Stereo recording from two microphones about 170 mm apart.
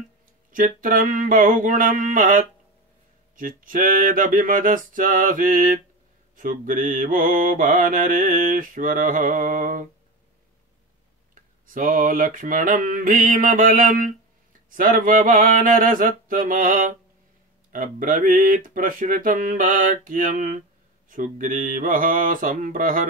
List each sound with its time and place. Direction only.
0.5 s mantra: 50° right (ahead or behind)
11.6 s mantra: 50° right (ahead or behind)